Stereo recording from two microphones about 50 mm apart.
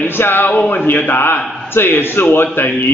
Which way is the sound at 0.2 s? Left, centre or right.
Left.